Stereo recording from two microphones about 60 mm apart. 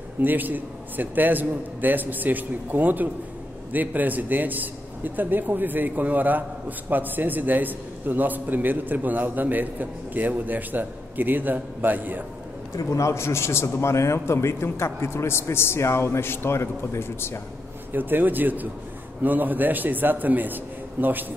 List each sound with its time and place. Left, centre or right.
0.2 s a man's voice: right
12.7 s a man's voice: left
17.9 s a man's voice: right